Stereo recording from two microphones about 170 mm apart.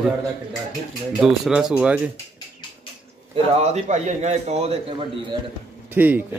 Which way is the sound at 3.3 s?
40° right (ahead or behind).